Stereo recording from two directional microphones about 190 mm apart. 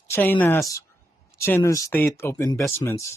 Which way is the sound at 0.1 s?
10° left (ahead or behind).